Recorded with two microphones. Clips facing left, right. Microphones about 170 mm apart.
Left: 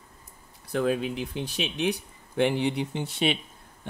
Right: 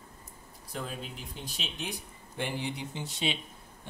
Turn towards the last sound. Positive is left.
turn(degrees=60)  # may be behind; listen again after turning